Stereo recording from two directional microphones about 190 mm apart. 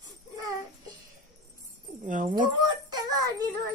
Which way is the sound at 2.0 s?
45° right (ahead or behind).